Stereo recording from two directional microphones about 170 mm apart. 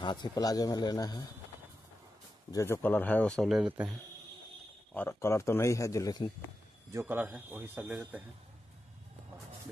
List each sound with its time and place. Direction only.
0.0 s speech: 25° left (ahead or behind)
2.5 s speech: 15° left (ahead or behind); by 4.0 s 5° right (ahead or behind)
4.9 s speech: 15° left (ahead or behind)
6.9 s a man's voice: 15° right (ahead or behind)